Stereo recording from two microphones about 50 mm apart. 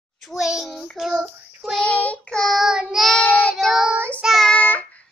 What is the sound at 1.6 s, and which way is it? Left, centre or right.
Child singing, centre.